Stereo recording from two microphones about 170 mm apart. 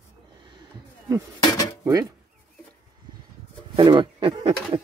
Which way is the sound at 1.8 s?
20° right (ahead or behind).